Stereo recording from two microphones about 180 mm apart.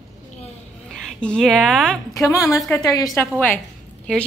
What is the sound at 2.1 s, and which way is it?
Speech, 15° left (ahead or behind).